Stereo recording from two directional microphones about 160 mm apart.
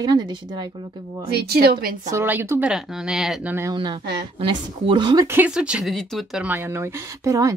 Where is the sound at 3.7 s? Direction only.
25° right (ahead or behind).